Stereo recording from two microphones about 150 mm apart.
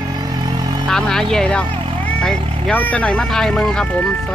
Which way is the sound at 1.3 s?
5° left (ahead or behind).